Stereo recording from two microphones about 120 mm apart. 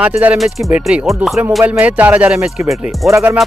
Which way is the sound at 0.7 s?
10° right (ahead or behind).